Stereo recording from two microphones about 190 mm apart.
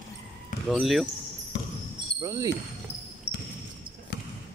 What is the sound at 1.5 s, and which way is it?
Basketball bounce, 65° left (ahead or behind).